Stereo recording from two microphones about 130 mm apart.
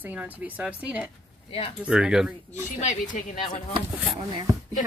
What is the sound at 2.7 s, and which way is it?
Speech, 70° left (ahead or behind).